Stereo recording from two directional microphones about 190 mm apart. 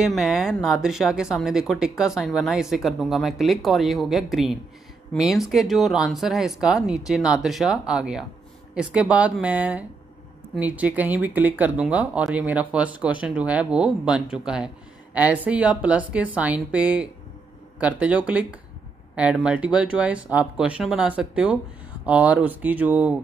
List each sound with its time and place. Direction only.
0.0 s speech: centre (ahead or behind)